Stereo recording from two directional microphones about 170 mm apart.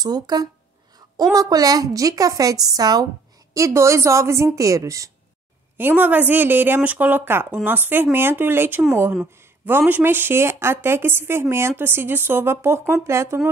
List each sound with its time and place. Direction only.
0.0 s a woman's voice: 20° right (ahead or behind)